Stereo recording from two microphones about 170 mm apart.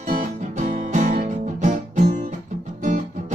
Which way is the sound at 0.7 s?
45° right (ahead or behind).